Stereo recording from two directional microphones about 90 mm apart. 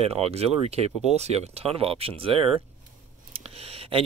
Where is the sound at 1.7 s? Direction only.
90° right.